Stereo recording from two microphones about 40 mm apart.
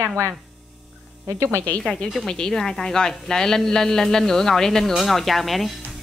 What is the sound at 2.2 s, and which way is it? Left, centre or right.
A woman's voice, centre.